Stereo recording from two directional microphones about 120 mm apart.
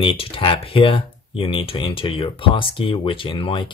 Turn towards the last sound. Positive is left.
turn(degrees=45)  # may be behind; listen again after turning